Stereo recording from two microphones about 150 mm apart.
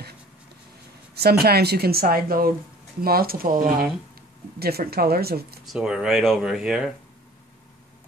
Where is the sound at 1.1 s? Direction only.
90° right.